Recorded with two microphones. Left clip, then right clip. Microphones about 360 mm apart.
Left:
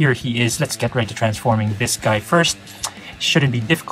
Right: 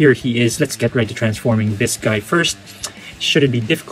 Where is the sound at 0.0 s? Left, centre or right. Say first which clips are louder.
Right 5 dB; centre.